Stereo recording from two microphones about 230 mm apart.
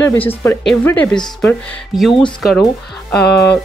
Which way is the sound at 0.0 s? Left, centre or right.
Centre.